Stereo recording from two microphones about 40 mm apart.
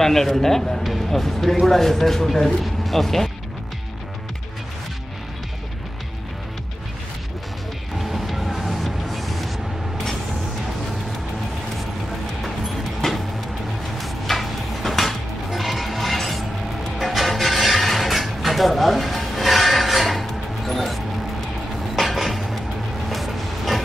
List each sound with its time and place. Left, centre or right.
0.0 s speech: centre
8.0 s music: centre
12.1 s music: centre
21.9 s a sound: centre
23.0 s music: centre